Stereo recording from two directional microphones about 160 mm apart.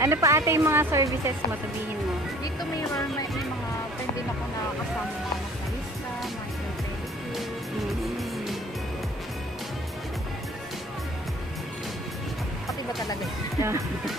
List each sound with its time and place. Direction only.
0.0 s a woman's voice: 20° right (ahead or behind)
13.6 s a woman's voice: 15° right (ahead or behind)